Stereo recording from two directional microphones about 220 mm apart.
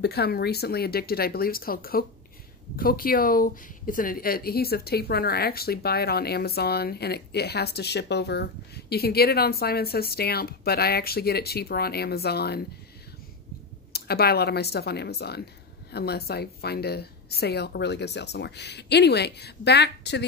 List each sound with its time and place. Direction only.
0.0 s speech: 45° left (ahead or behind)
13.9 s speech: 45° left (ahead or behind)